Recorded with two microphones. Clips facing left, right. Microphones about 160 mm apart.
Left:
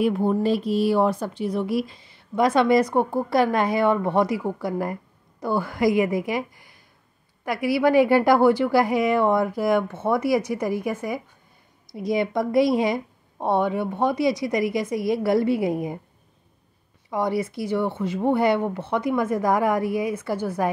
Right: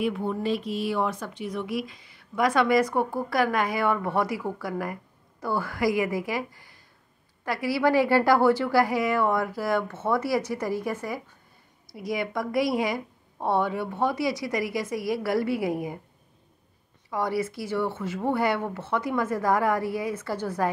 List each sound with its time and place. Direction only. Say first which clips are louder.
0.0 s a woman's voice: left 6 dB; 40° left (ahead or behind); by 11.1 s 15° left (ahead or behind)
11.9 s speech: left 6 dB; 25° left (ahead or behind)
17.1 s a woman's voice: left 3 dB; 20° left (ahead or behind)